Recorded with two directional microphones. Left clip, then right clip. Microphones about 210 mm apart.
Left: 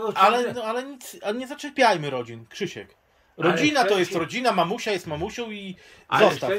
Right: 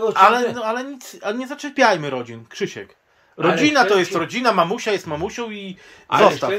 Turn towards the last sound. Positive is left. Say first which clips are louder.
# right 4 dB
turn(degrees=10)  # may be behind; listen again after turning